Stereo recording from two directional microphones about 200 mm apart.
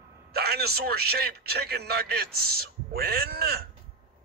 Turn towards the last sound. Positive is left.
turn(degrees=-50)  # may be behind; listen again after turning